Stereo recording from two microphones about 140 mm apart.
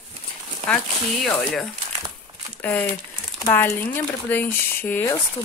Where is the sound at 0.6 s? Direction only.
Centre (ahead or behind).